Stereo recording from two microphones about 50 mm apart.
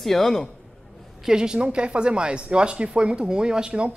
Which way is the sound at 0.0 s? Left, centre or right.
Centre.